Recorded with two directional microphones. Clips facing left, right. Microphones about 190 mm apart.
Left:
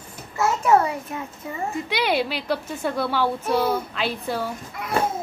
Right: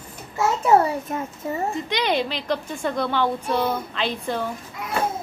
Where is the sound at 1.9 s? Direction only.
5° left (ahead or behind).